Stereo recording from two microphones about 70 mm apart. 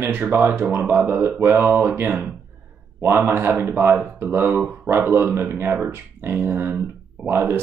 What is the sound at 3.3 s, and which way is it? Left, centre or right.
Speech, right.